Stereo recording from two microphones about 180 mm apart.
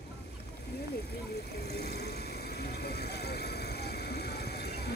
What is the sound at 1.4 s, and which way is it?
Vehicle, 60° left (ahead or behind).